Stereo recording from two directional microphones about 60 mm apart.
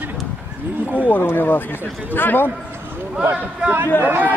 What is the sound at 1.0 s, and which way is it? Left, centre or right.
Speech, left.